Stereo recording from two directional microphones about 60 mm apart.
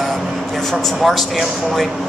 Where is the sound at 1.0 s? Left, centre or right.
Centre.